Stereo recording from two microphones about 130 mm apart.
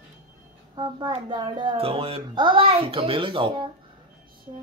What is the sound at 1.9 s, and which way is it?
Speech, 45° right (ahead or behind).